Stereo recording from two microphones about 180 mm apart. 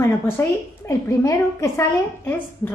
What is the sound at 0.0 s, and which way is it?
Speech, 15° left (ahead or behind).